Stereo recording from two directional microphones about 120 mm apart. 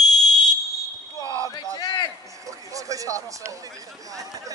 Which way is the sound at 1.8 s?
35° left (ahead or behind).